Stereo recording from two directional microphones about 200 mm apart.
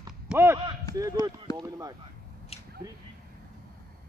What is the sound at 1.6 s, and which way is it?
Speech, 20° right (ahead or behind).